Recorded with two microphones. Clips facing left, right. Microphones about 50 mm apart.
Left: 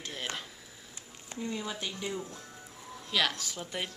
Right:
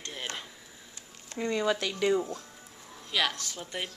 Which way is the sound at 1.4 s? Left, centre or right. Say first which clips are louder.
Right 8 dB; right.